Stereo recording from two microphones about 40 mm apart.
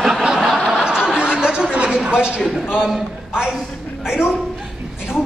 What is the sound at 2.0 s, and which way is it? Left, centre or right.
Speech, right.